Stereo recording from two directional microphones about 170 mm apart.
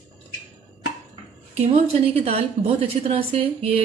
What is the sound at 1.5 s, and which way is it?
A woman's voice, 40° right (ahead or behind).